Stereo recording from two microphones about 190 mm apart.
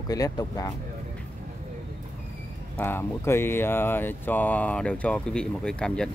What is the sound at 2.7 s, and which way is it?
Speech, 10° left (ahead or behind).